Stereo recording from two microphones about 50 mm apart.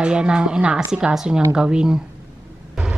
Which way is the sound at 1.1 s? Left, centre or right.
Centre.